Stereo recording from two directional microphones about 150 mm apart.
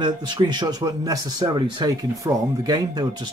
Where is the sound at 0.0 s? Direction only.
30° right (ahead or behind).